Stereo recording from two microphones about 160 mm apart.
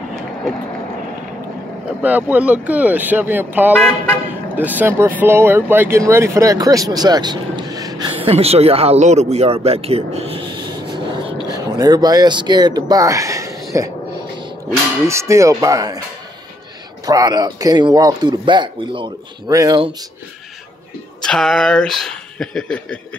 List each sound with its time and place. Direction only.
2.0 s speech: 10° right (ahead or behind)
8.1 s speech: 35° right (ahead or behind); by 13.9 s 20° right (ahead or behind)
15.0 s a man's voice: 20° right (ahead or behind)
17.0 s a man's voice: 25° right (ahead or behind)
21.2 s speech: 5° left (ahead or behind)